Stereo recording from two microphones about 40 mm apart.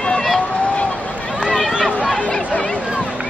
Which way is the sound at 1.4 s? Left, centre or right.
Centre.